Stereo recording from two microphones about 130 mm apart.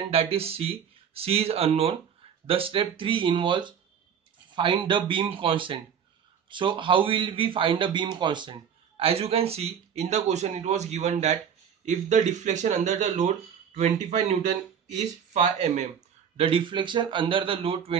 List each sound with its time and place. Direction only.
0.1 s a man's voice: 50° right (ahead or behind)
16.3 s a man's voice: 45° right (ahead or behind)